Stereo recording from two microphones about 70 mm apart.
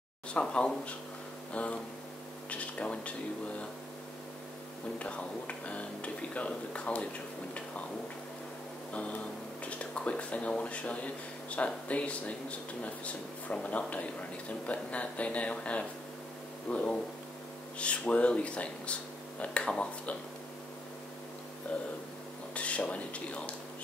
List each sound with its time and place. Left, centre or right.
0.3 s speech: centre
4.9 s speech: centre
9.7 s speech: centre
22.5 s speech: centre